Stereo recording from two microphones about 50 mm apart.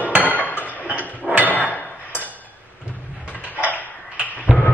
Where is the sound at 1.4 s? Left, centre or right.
Left.